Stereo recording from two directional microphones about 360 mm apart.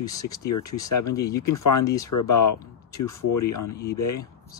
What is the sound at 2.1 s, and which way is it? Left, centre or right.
Speech, left.